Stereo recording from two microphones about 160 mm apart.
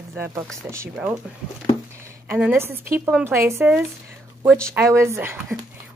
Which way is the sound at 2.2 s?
10° right (ahead or behind).